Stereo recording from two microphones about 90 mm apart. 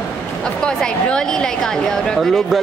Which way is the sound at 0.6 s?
10° left (ahead or behind).